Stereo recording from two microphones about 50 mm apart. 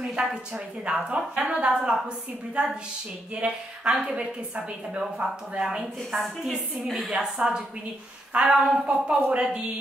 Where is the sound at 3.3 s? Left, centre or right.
Right.